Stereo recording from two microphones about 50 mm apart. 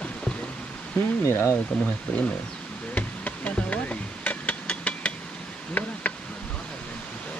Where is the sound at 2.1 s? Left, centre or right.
Left.